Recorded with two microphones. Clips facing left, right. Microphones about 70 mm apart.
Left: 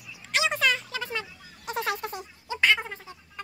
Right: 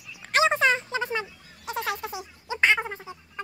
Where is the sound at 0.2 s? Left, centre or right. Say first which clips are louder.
Right 4 dB; right.